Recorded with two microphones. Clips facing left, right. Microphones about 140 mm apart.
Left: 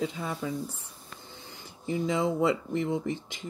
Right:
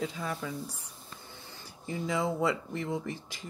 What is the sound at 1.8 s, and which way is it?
Speech, 25° left (ahead or behind).